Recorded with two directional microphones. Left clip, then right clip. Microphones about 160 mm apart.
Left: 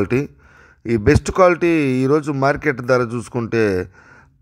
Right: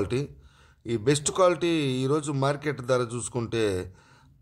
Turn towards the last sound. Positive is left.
turn(degrees=30)  # may be behind; listen again after turning